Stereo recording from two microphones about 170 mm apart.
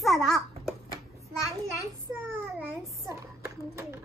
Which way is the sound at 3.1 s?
15° right (ahead or behind).